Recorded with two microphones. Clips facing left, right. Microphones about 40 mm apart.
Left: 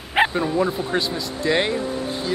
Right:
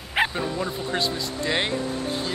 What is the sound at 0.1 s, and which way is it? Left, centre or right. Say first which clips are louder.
Bow-wow: left 5 dB; centre.